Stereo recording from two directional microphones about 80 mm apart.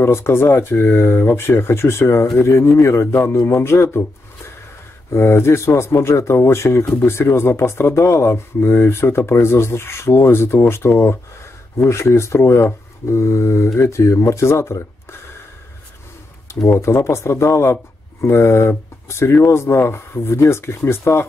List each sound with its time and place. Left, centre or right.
0.0 s speech: left
5.1 s speech: left
16.8 s speech: left